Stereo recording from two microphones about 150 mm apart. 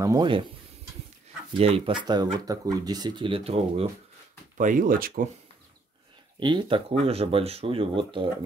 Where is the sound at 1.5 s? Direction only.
40° right (ahead or behind).